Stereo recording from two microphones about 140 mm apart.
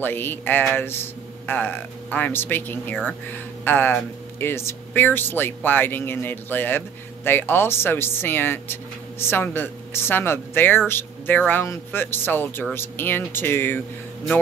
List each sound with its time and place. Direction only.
0.0 s speech: 15° left (ahead or behind)